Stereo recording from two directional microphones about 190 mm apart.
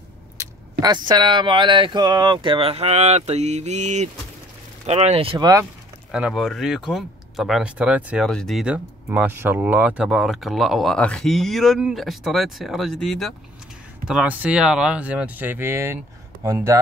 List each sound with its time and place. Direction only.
0.4 s speech: 20° right (ahead or behind)
6.1 s speech: 5° right (ahead or behind)